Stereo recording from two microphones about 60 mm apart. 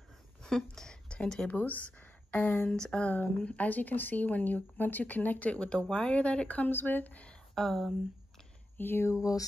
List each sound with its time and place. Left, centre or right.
0.4 s speech: centre
1.5 s speech: left
2.7 s speech: centre
7.5 s speech: centre
8.7 s speech: left
9.1 s a sound: left